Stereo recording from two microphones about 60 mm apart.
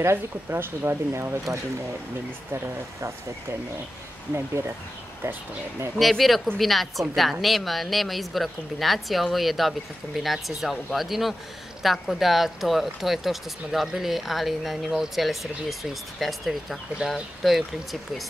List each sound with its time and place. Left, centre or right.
0.0 s speech: right
5.9 s speech: centre